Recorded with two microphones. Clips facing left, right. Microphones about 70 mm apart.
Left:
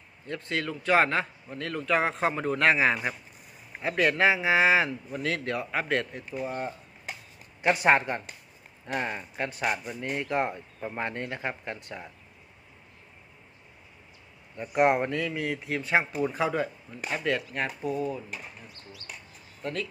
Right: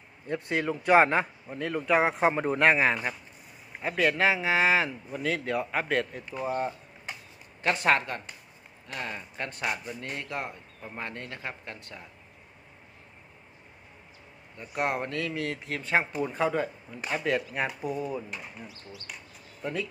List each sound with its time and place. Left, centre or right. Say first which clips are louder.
0.3 s speech: right 3 dB; centre
2.6 s a man's voice: even; centre
7.6 s speech: left 3 dB; centre
8.9 s speech: left 6 dB; left
9.4 s speech: left 3 dB; centre
14.7 s speech: left 7 dB; left
15.0 s a man's voice: left 2 dB; centre
19.6 s speech: right 1 dB; centre